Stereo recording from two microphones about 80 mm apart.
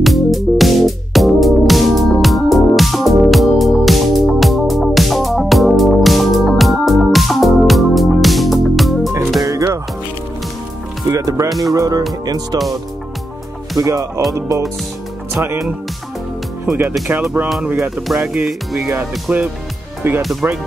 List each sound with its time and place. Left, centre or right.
0.0 s music: centre
9.4 s music: right
11.1 s music: right
11.6 s speech: right
13.7 s speech: right
17.1 s speech: right
17.7 s speech: centre
18.4 s music: centre
19.3 s speech: centre
20.2 s music: centre